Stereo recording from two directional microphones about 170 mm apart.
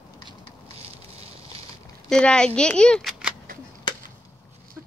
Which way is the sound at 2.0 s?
5° left (ahead or behind).